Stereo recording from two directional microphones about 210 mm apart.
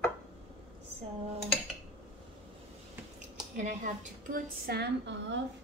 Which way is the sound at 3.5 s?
35° right (ahead or behind).